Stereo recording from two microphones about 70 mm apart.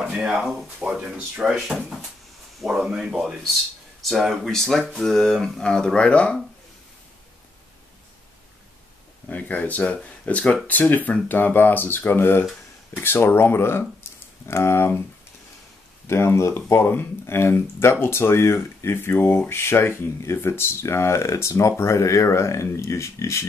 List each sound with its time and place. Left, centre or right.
0.1 s speech: centre
9.3 s speech: left
16.1 s speech: left